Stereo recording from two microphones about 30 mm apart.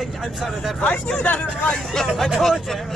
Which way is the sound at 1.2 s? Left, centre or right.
Left.